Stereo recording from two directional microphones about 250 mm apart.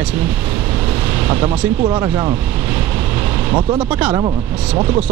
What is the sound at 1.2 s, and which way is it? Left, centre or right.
Speech, centre.